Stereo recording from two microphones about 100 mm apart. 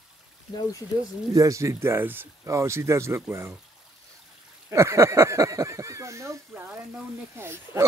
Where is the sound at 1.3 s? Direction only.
35° right (ahead or behind).